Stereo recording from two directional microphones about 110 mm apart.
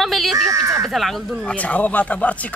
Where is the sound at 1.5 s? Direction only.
15° left (ahead or behind).